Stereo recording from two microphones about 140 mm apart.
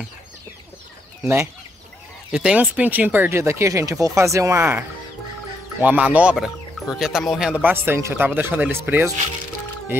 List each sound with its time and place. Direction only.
2.3 s speech: 10° right (ahead or behind)